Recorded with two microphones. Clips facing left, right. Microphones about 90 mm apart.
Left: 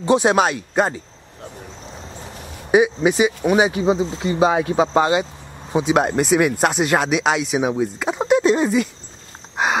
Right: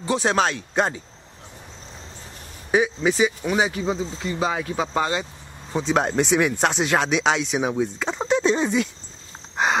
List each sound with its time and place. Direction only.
0.0 s speech: 15° left (ahead or behind)
2.7 s speech: 15° left (ahead or behind)
5.7 s speech: 10° left (ahead or behind)
9.6 s a sound: 5° left (ahead or behind)